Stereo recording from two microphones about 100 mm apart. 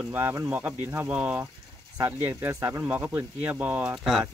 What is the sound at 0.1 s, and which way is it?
Speech, 25° right (ahead or behind).